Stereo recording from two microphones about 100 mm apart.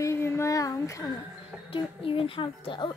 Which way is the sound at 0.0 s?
25° left (ahead or behind).